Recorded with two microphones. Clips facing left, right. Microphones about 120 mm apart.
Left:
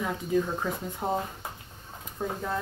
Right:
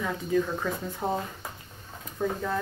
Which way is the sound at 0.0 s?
15° left (ahead or behind).